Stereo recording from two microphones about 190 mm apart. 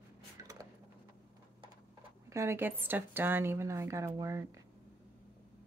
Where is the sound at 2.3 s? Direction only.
15° right (ahead or behind).